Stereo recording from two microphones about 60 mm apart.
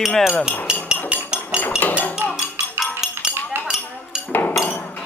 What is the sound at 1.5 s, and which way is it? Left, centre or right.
Dishes, left.